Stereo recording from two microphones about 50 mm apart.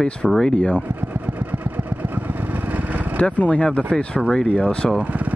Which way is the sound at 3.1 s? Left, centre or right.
Left.